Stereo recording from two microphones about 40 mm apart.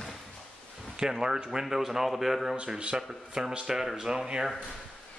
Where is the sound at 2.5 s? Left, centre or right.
Right.